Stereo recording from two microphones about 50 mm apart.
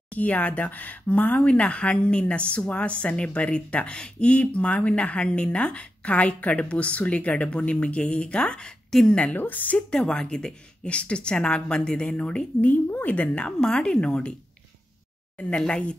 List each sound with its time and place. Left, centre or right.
0.1 s speech: left
9.2 s a woman's voice: left
9.8 s a woman's voice: centre